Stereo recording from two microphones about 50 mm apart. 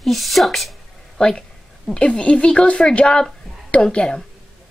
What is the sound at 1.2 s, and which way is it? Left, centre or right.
A woman's voice, centre.